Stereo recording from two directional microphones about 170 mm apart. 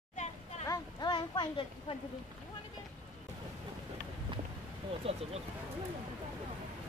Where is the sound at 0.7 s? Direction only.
25° left (ahead or behind).